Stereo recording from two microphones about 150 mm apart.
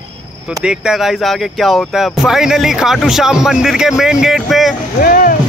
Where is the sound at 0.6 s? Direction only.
5° right (ahead or behind).